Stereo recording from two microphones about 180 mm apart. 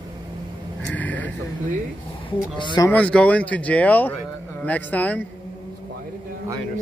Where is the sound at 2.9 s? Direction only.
5° left (ahead or behind).